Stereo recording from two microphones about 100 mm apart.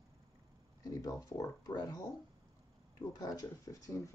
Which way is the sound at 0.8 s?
35° left (ahead or behind).